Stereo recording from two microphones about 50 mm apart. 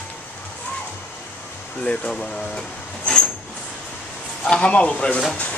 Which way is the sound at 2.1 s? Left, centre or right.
Centre.